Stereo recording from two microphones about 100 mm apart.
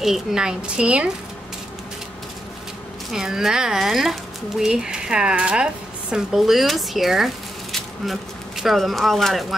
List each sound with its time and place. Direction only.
0.0 s speech: 5° right (ahead or behind)
3.1 s speech: 5° right (ahead or behind)